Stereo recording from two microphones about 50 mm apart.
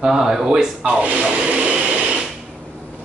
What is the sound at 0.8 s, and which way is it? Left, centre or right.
Speech, right.